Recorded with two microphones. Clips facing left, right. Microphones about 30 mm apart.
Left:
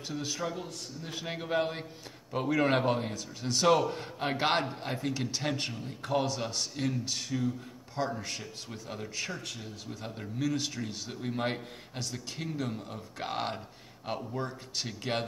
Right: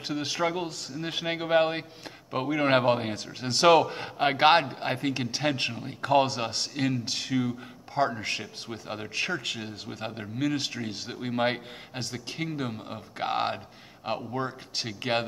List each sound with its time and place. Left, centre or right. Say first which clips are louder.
0.0 s speech: right 6 dB; right
0.6 s speech: right 7 dB; right
0.9 s speech: right 9 dB; right
1.2 s a man's voice: right 7 dB; right
2.4 s speech: right 1 dB; centre
2.7 s a man's voice: right 5 dB; right
6.7 s a man's voice: right 4 dB; right
9.4 s speech: right 8 dB; right
9.7 s a man's voice: right 5 dB; right